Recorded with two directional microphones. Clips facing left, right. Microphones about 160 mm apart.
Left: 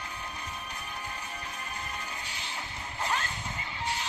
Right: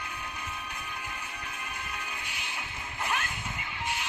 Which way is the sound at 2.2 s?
35° left (ahead or behind).